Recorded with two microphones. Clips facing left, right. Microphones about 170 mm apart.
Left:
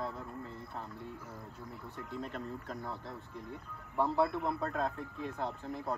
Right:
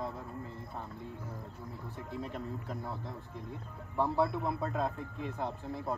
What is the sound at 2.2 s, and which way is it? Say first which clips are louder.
Speech: right 1 dB; 10° right (ahead or behind).